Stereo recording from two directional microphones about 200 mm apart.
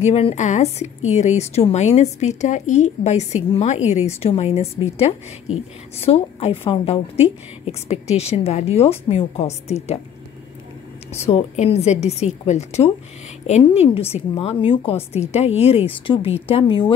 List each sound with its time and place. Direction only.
0.0 s a woman's voice: 30° left (ahead or behind)
11.1 s a woman's voice: 35° left (ahead or behind)